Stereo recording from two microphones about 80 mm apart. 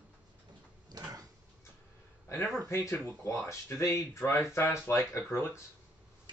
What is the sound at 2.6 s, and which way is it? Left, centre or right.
Speech, left.